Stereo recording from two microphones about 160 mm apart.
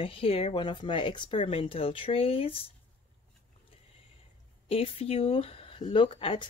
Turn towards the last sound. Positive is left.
turn(degrees=35)  # may be behind; listen again after turning